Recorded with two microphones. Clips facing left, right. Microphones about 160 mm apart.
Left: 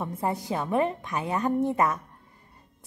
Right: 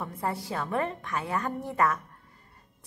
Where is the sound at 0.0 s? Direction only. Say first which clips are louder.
Left 3 dB; 20° left (ahead or behind).